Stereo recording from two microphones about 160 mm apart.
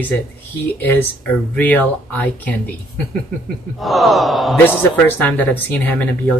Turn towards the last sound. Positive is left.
turn(degrees=10)  # may be behind; listen again after turning